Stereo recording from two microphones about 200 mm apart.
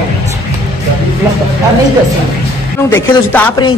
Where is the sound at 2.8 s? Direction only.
10° left (ahead or behind).